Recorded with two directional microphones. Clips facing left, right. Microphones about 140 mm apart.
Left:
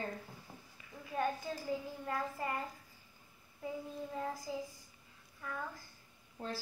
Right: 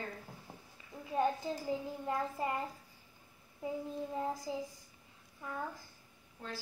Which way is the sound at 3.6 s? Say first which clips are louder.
Right 3 dB; 20° right (ahead or behind).